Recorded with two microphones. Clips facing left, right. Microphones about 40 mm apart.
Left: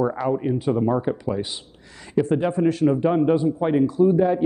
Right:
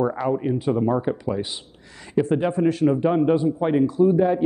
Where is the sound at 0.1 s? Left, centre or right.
Centre.